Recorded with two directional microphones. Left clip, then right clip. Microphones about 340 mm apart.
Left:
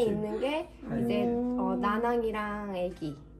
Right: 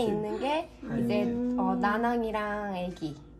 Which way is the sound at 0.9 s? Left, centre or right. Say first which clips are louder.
Even; right.